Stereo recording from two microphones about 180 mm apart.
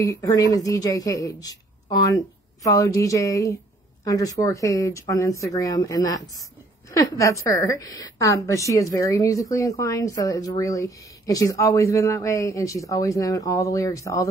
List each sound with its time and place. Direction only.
0.0 s a woman's voice: 20° left (ahead or behind)